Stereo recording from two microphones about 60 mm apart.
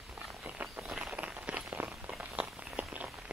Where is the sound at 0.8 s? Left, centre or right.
Centre.